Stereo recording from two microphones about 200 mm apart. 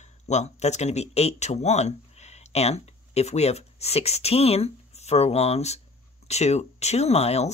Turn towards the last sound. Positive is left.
turn(degrees=30)  # may be behind; listen again after turning